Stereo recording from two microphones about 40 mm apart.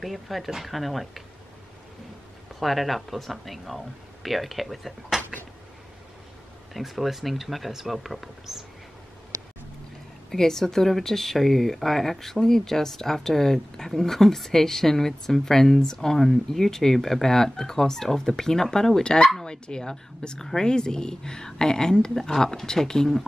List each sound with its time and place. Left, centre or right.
0.0 s speech: centre
2.6 s speech: centre
6.7 s speech: centre
10.3 s speech: centre